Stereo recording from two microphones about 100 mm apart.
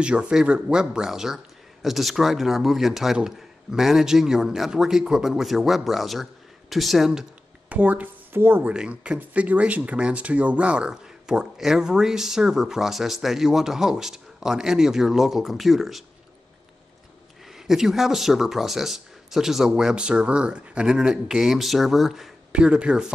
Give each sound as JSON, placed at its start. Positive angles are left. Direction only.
{"t": 0.0, "sound": "speech", "side_deg": -10}
{"t": 7.7, "sound": "speech", "side_deg": -15}
{"t": 8.7, "sound": "speech", "side_deg": -10}
{"t": 17.5, "sound": "speech", "side_deg": -5}